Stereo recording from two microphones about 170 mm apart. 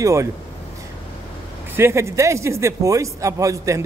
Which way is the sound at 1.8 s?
15° right (ahead or behind).